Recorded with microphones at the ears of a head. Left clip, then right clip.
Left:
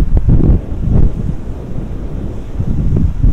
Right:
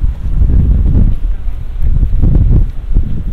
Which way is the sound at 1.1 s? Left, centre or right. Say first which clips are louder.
Left 8 dB; left.